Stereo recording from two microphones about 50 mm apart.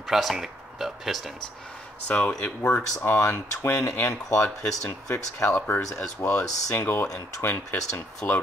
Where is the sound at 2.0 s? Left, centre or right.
Left.